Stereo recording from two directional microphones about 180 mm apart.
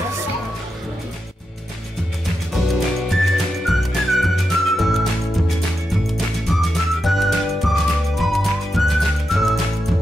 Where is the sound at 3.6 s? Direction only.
Centre (ahead or behind).